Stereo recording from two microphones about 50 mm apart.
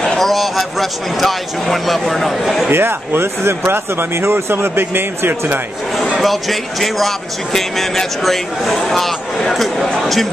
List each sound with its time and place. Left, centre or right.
0.2 s speech: centre
2.7 s speech: right
6.1 s speech: centre